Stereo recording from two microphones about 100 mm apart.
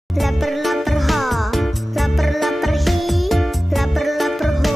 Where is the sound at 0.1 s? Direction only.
Centre (ahead or behind).